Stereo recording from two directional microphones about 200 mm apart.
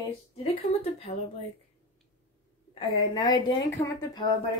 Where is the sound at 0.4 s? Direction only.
30° left (ahead or behind).